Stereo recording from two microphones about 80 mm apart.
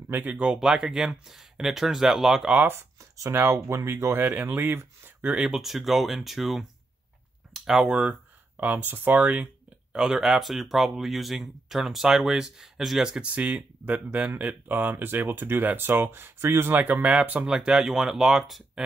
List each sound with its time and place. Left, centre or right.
0.1 s speech: right
0.6 s speech: centre
2.5 s speech: right
5.3 s speech: centre
8.5 s speech: right
9.9 s speech: centre